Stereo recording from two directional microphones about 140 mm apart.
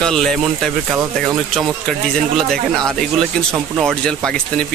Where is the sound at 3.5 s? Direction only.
Centre (ahead or behind).